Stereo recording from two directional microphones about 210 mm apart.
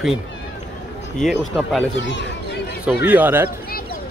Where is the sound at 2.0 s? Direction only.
60° left (ahead or behind).